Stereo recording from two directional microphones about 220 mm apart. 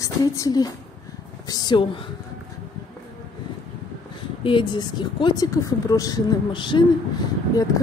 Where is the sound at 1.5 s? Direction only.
20° left (ahead or behind).